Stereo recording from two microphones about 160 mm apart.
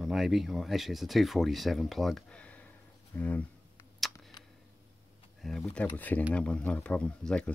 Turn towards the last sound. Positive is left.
turn(degrees=5)  # may be behind; listen again after turning